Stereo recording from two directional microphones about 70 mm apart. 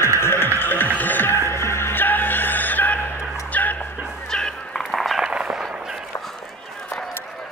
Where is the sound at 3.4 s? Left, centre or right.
Left.